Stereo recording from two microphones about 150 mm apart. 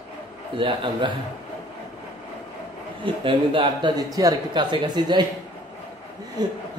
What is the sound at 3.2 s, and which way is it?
Speech, 35° right (ahead or behind).